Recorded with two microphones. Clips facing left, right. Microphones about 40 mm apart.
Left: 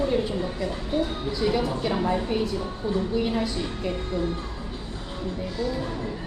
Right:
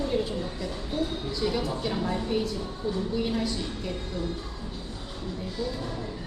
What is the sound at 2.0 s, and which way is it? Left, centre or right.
A woman's voice, left.